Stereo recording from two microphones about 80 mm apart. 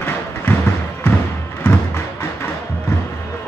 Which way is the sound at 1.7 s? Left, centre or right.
Left.